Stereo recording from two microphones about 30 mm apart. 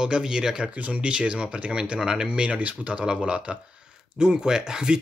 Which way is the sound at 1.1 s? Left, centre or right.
Right.